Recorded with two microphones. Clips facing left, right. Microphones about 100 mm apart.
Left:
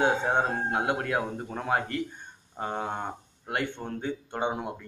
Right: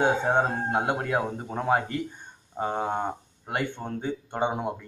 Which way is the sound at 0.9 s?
15° right (ahead or behind).